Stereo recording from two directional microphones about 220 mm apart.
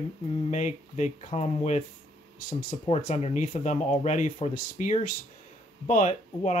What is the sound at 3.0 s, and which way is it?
Speech, 30° left (ahead or behind).